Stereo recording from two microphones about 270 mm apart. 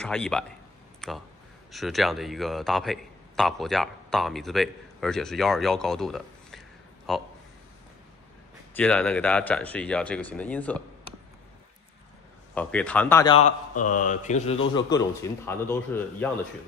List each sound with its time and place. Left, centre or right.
0.0 s a man's voice: centre
8.7 s a man's voice: centre
12.5 s speech: centre; by 14.6 s left
14.8 s a man's voice: centre